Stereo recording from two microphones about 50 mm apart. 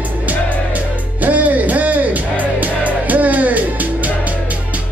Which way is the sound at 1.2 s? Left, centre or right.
Right.